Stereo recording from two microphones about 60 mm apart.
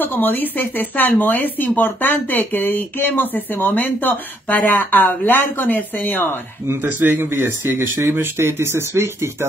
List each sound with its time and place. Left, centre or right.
0.0 s speech: left
6.6 s speech: right
6.9 s speech: right